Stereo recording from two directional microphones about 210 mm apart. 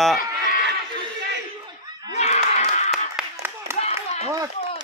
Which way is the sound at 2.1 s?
30° left (ahead or behind).